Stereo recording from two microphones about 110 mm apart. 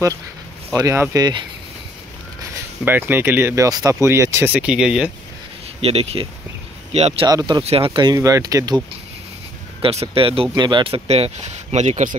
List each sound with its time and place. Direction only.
0.7 s speech: 30° right (ahead or behind)
2.8 s speech: 20° right (ahead or behind)
4.5 s speech: 10° right (ahead or behind)
5.8 s speech: 65° right (ahead or behind)
6.9 s speech: 75° right (ahead or behind)
7.6 s speech: 55° right (ahead or behind); by 8.8 s 35° right (ahead or behind)
9.8 s speech: 60° right (ahead or behind)
10.5 s speech: 45° right (ahead or behind); by 12.0 s 90° right